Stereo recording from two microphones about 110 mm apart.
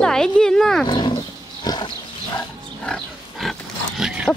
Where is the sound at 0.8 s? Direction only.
40° left (ahead or behind).